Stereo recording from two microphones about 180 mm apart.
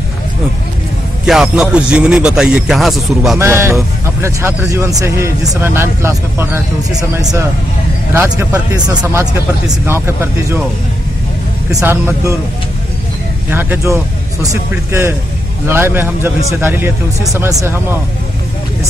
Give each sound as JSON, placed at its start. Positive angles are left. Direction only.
{"t": 1.2, "sound": "speech", "side_deg": -5}
{"t": 3.3, "sound": "speech", "side_deg": -15}
{"t": 11.7, "sound": "speech", "side_deg": -15}
{"t": 13.5, "sound": "speech", "side_deg": -10}